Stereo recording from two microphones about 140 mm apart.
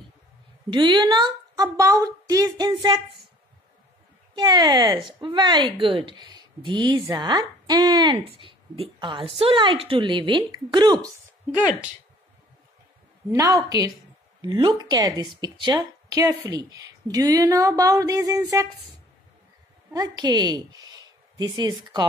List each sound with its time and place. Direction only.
0.7 s a woman's voice: 35° right (ahead or behind)
4.4 s a woman's voice: 30° right (ahead or behind)
13.3 s a woman's voice: 25° right (ahead or behind)
19.9 s a woman's voice: 30° right (ahead or behind)